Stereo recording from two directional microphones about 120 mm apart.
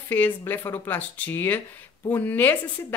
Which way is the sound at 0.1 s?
15° left (ahead or behind).